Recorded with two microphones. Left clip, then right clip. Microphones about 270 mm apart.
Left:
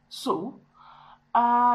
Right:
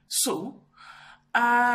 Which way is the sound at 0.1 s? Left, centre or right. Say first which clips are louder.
Even; right.